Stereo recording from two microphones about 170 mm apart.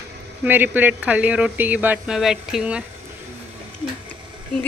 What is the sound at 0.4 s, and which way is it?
Speech, 10° right (ahead or behind).